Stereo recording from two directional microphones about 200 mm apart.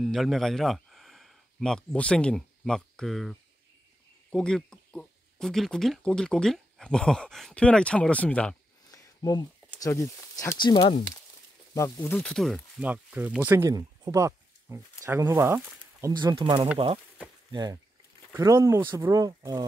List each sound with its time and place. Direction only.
0.0 s speech: centre (ahead or behind)
8.9 s a sound: 20° left (ahead or behind)
9.8 s speech: 15° left (ahead or behind)
11.7 s speech: 15° left (ahead or behind); by 19.6 s 20° right (ahead or behind)